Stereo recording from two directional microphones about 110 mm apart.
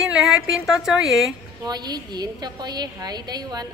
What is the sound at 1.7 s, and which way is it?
A woman's voice, 40° right (ahead or behind).